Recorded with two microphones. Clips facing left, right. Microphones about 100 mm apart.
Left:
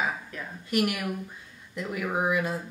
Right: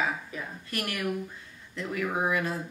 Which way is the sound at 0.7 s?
15° left (ahead or behind).